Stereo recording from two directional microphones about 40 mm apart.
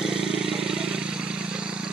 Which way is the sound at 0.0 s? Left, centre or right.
Centre.